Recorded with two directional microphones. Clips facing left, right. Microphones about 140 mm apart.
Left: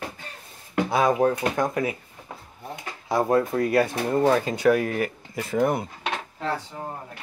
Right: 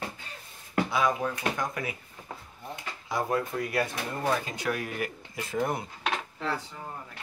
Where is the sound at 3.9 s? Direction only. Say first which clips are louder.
Left 11 dB; 30° left (ahead or behind).